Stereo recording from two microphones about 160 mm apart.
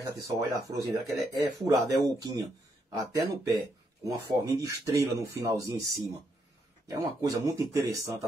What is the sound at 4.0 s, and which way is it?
Speech, 20° right (ahead or behind).